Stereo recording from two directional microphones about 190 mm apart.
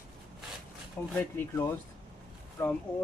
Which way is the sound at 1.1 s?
10° left (ahead or behind).